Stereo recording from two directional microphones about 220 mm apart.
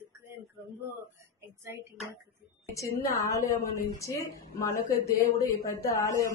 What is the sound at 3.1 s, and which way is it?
A woman's voice, 15° left (ahead or behind).